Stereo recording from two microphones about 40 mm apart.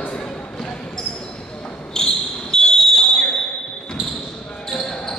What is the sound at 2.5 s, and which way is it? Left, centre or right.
Smoke detector, centre.